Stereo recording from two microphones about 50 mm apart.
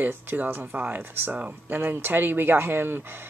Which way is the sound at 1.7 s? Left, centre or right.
Right.